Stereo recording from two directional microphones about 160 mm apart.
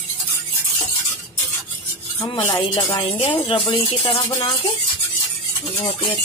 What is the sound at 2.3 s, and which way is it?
Speech, 30° left (ahead or behind).